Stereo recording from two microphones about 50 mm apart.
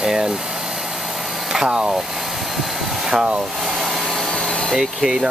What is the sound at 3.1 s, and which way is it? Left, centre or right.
Speech, centre.